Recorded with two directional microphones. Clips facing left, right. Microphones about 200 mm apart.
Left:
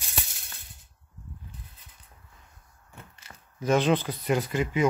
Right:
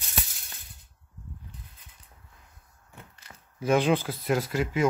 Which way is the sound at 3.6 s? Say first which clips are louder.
Even; 10° right (ahead or behind).